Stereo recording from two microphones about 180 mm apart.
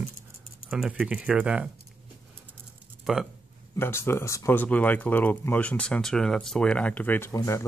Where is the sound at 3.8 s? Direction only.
15° left (ahead or behind).